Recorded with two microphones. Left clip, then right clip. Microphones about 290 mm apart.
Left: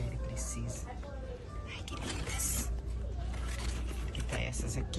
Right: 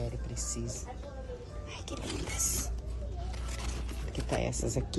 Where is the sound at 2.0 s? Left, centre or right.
Centre.